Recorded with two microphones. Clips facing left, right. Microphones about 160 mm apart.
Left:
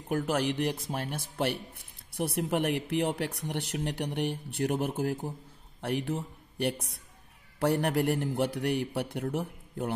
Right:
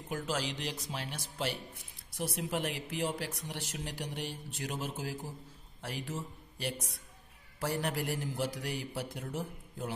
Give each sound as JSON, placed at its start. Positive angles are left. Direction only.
{"t": 0.1, "sound": "a man's voice", "side_deg": 60}